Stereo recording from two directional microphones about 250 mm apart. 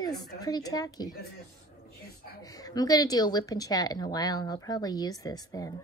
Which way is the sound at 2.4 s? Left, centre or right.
Centre.